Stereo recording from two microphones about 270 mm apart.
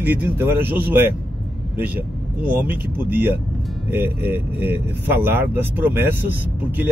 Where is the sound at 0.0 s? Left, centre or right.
Centre.